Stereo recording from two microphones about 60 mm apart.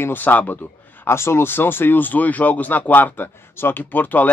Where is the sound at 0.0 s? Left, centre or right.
Left.